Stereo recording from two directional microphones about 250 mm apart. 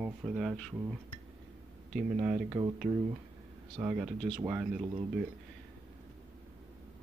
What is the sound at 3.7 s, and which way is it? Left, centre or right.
Speech, centre.